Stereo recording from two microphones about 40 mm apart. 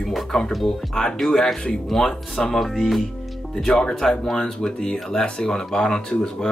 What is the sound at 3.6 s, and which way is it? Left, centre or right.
Speech, centre.